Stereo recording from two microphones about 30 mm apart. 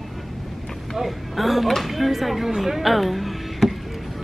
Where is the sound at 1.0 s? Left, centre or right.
Centre.